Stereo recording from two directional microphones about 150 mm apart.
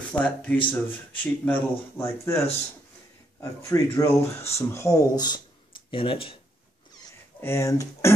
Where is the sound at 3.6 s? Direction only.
20° left (ahead or behind); by 6.3 s 35° left (ahead or behind).